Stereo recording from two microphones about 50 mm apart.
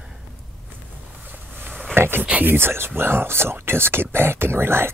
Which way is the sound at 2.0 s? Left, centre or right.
Right.